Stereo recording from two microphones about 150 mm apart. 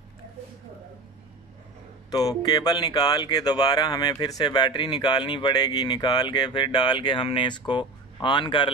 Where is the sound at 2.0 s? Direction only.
25° left (ahead or behind).